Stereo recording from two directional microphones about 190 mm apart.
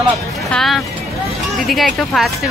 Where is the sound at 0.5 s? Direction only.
Centre (ahead or behind).